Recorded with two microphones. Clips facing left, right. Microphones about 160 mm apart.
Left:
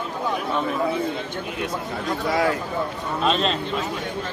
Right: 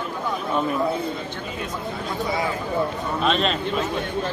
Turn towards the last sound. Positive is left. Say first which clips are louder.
# even
turn(degrees=0)  # may be behind; listen again after turning